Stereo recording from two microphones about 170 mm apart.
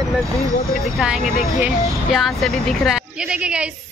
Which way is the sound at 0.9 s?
Centre (ahead or behind).